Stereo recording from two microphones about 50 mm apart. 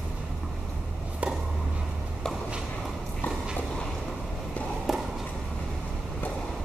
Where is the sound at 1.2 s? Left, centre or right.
Right.